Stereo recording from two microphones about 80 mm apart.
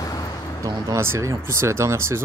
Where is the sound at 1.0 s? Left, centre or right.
Right.